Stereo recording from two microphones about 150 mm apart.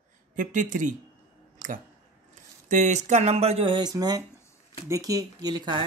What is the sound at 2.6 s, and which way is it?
Speech, 55° right (ahead or behind).